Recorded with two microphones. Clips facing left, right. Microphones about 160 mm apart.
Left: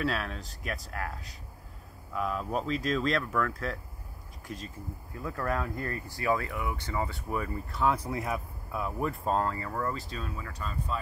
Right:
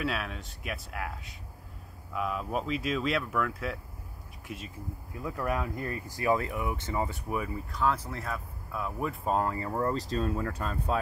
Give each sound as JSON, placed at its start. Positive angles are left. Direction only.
{"t": 0.0, "sound": "speech", "side_deg": -5}
{"t": 6.1, "sound": "speech", "side_deg": -20}
{"t": 7.7, "sound": "speech", "side_deg": 5}
{"t": 8.7, "sound": "speech", "side_deg": 0}
{"t": 9.6, "sound": "speech", "side_deg": -25}